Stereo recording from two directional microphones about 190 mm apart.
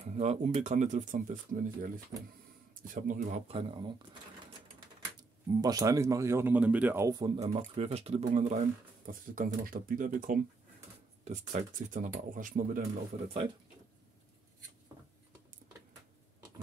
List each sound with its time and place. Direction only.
0.1 s speech: 35° right (ahead or behind)
2.9 s speech: 45° right (ahead or behind); by 3.9 s 25° right (ahead or behind)
5.6 s speech: 20° right (ahead or behind)
7.7 s speech: 30° right (ahead or behind)